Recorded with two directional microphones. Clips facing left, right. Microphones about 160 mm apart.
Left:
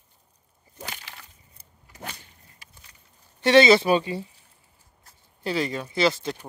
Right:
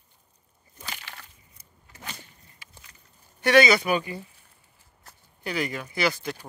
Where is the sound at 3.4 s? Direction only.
25° left (ahead or behind).